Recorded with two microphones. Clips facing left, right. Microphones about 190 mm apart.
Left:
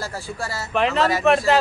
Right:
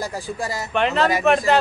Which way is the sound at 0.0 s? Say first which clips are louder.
Right 3 dB; 15° right (ahead or behind).